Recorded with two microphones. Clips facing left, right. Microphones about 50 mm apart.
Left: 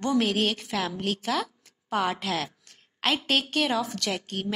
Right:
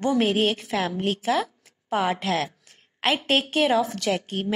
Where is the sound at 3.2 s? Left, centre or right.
Centre.